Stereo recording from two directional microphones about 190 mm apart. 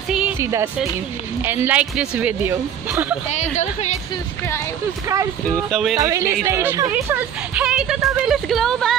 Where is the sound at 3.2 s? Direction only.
35° left (ahead or behind).